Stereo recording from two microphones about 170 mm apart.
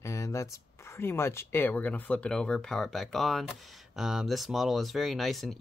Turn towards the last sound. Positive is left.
turn(degrees=0)  # may be behind; listen again after turning